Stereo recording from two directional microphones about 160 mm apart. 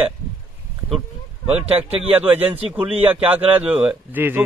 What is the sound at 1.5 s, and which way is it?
Speech, 10° right (ahead or behind).